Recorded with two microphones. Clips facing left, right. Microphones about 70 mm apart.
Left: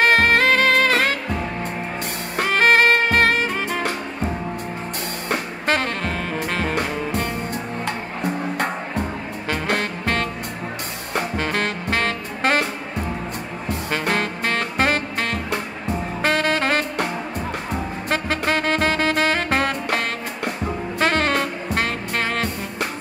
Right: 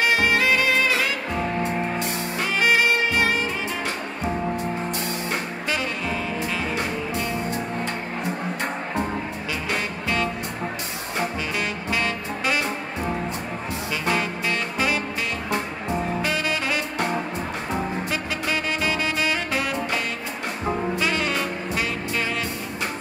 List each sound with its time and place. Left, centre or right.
0.0 s music: left
2.3 s saxophone: left
5.3 s music: left
11.1 s saxophone: left
13.7 s music: left
16.2 s saxophone: left
18.1 s music: left